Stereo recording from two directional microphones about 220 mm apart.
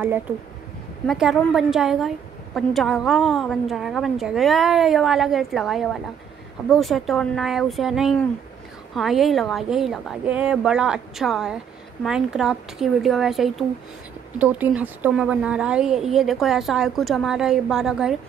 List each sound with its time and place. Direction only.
1.0 s a woman's voice: centre (ahead or behind)